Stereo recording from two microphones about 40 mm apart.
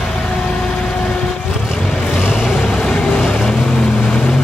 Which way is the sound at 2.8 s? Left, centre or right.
Centre.